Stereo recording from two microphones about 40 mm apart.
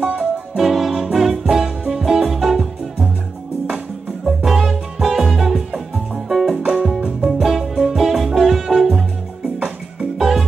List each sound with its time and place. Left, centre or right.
0.1 s music: centre
4.4 s music: centre
10.1 s music: centre